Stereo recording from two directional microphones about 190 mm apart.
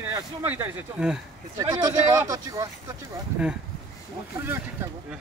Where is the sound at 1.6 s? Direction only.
20° right (ahead or behind).